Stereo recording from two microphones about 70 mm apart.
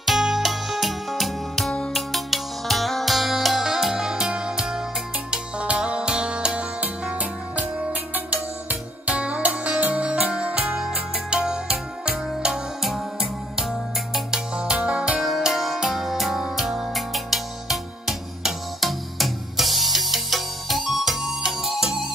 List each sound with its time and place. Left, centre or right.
0.0 s music: centre
15.2 s music: centre